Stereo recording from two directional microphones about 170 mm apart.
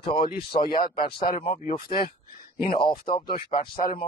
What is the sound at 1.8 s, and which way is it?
Speech, 60° left (ahead or behind).